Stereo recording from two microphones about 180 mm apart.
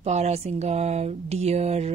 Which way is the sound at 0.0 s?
40° right (ahead or behind).